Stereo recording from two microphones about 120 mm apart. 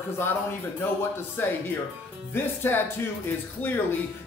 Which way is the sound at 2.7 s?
20° left (ahead or behind).